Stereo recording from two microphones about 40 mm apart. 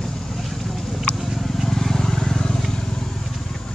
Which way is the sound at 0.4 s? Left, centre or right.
Centre.